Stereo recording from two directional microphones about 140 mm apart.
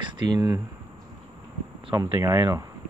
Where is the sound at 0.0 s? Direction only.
30° right (ahead or behind).